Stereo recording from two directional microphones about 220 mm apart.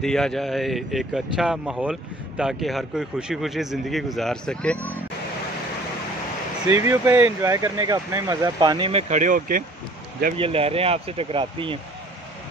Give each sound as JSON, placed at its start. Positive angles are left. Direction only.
{"t": 0.0, "sound": "speech", "side_deg": 0}
{"t": 6.7, "sound": "speech", "side_deg": -15}
{"t": 9.1, "sound": "speech", "side_deg": -35}
{"t": 10.3, "sound": "speech", "side_deg": -25}